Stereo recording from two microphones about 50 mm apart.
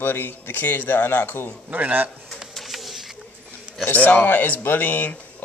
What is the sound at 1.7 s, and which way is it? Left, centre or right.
Speech, right.